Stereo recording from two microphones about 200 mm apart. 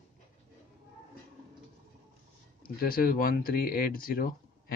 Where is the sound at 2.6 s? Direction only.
50° left (ahead or behind).